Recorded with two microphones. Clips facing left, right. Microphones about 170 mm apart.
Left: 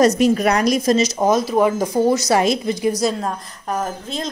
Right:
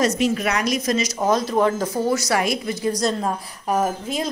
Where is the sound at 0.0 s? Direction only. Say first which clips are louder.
Left 6 dB; 40° left (ahead or behind).